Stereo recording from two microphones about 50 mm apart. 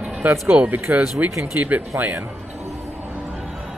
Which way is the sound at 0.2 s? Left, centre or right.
Right.